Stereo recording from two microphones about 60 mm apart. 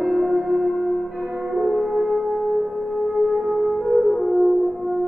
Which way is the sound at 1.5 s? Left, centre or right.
Centre.